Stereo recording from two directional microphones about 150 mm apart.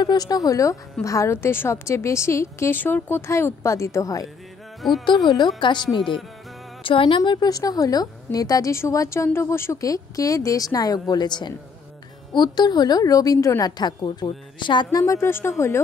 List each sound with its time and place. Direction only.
0.0 s a woman's voice: 25° left (ahead or behind)